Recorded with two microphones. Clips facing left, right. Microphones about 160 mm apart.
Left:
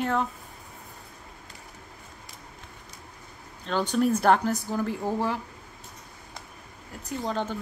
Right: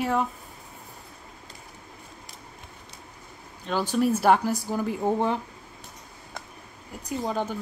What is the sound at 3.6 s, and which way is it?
Speech, 5° right (ahead or behind).